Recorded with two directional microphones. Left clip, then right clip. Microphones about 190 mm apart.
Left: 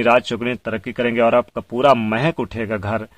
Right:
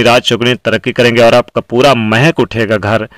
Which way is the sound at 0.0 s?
30° right (ahead or behind).